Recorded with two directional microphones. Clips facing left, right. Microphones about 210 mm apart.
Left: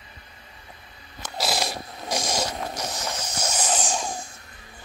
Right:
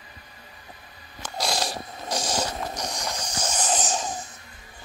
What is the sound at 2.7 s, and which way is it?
Snoring, 5° left (ahead or behind).